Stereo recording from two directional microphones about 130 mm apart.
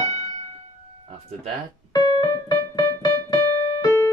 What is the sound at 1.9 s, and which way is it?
Keyboard, 30° left (ahead or behind).